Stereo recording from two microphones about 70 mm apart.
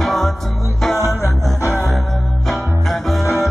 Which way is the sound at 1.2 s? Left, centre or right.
Left.